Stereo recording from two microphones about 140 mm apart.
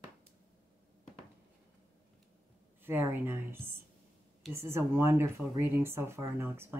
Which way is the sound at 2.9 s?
15° right (ahead or behind).